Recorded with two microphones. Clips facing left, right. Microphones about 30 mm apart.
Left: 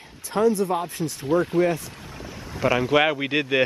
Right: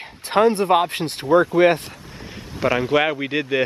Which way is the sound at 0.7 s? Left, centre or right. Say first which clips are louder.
Right 8 dB; right.